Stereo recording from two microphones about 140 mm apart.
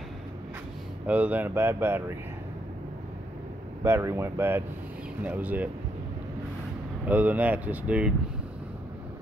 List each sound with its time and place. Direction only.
1.0 s speech: 10° right (ahead or behind)
3.8 s speech: 20° right (ahead or behind)
7.1 s speech: 10° right (ahead or behind)